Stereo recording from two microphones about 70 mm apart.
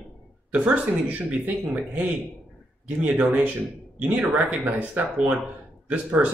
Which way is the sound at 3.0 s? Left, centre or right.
Right.